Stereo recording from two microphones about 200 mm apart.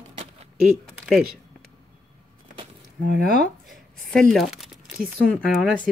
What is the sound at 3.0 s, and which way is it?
Speech, 55° right (ahead or behind).